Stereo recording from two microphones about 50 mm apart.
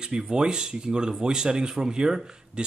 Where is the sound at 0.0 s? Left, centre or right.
Centre.